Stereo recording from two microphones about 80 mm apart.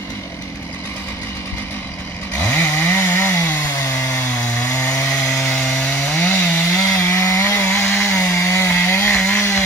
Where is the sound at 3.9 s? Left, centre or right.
Left.